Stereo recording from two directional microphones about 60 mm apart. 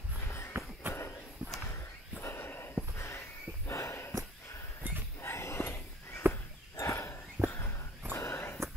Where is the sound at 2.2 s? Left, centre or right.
Left.